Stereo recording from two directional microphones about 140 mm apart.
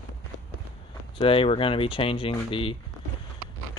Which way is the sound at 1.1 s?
40° left (ahead or behind).